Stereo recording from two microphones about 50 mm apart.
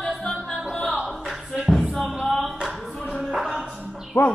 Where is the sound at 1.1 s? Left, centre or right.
Centre.